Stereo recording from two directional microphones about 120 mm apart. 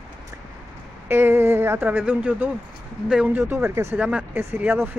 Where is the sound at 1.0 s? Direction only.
20° right (ahead or behind).